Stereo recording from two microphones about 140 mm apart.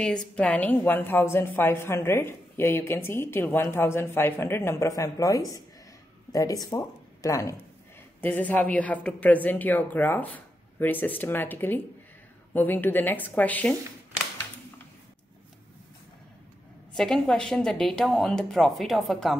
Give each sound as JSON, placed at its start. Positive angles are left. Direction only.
{"t": 0.0, "sound": "a woman's voice", "side_deg": 5}
{"t": 8.2, "sound": "a woman's voice", "side_deg": 10}
{"t": 16.9, "sound": "a woman's voice", "side_deg": 5}